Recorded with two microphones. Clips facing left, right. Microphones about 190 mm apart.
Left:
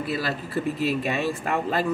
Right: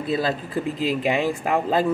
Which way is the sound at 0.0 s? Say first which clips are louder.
Right 4 dB; 20° right (ahead or behind).